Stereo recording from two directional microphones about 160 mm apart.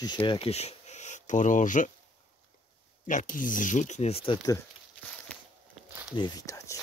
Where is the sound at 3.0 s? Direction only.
55° left (ahead or behind); by 4.5 s 30° left (ahead or behind).